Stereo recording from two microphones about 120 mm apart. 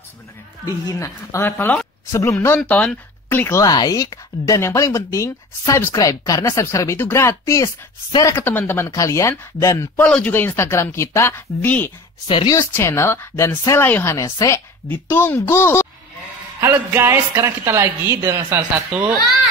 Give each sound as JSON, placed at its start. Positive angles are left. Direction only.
{"t": 0.7, "sound": "speech", "side_deg": 25}
{"t": 9.9, "sound": "speech", "side_deg": 10}
{"t": 12.3, "sound": "speech", "side_deg": 40}
{"t": 12.5, "sound": "speech", "side_deg": 20}
{"t": 16.6, "sound": "speech", "side_deg": -20}
{"t": 18.9, "sound": "a child's voice", "side_deg": -15}